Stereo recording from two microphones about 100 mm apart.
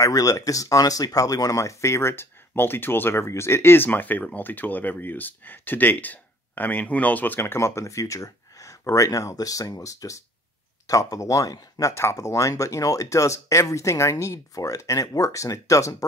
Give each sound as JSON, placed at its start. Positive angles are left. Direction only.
{"t": 0.0, "sound": "speech", "side_deg": 35}
{"t": 11.9, "sound": "speech", "side_deg": 25}